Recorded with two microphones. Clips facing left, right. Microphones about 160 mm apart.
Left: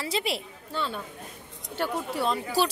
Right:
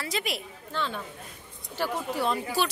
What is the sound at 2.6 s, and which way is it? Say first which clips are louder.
Speech: left 4 dB; 35° left (ahead or behind).